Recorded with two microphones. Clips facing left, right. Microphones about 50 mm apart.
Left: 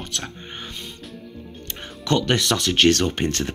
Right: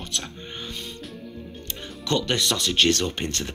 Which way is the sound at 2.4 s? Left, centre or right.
Left.